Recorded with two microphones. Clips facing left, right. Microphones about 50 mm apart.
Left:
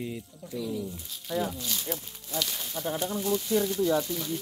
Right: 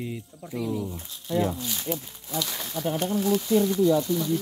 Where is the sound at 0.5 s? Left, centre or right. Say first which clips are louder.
Right 3 dB; right.